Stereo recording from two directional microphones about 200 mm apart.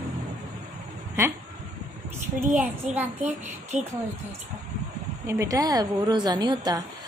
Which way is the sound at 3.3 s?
35° right (ahead or behind).